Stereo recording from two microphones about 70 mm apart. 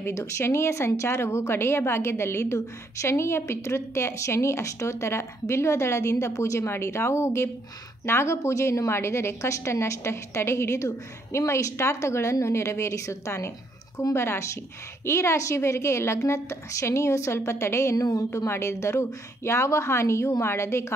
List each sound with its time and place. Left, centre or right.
0.0 s a woman's voice: left
17.9 s a woman's voice: left
18.3 s a woman's voice: left